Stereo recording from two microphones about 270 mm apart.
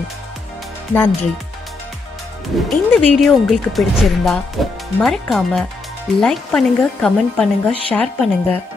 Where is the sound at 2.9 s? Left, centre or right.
Centre.